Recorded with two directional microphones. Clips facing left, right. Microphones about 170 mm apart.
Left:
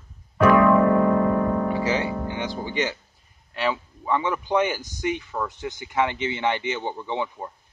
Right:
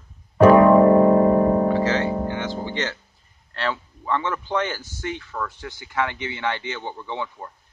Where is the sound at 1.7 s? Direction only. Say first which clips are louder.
Right 3 dB; 10° left (ahead or behind).